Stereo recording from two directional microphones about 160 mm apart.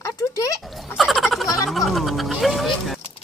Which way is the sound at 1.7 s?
Centre (ahead or behind).